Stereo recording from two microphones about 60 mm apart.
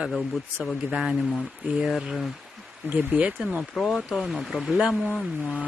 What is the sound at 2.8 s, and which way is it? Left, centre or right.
Speech, right.